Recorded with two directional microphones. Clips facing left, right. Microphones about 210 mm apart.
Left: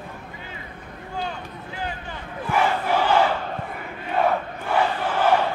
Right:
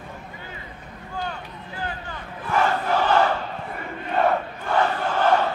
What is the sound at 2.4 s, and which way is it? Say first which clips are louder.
Crowd: even; 10° left (ahead or behind).